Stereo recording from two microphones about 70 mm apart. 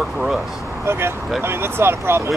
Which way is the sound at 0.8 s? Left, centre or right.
Right.